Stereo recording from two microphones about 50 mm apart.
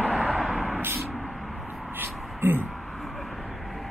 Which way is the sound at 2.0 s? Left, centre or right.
Right.